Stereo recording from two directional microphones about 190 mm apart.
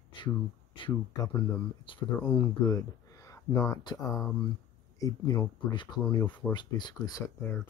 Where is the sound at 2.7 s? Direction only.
15° left (ahead or behind).